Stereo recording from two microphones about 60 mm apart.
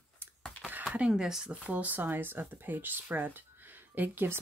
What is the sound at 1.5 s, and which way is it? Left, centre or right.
Speech, right.